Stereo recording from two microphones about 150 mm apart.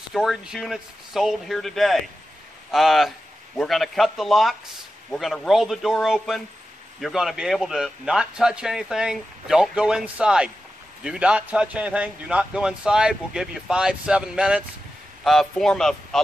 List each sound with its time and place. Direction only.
0.1 s a man's voice: 5° right (ahead or behind)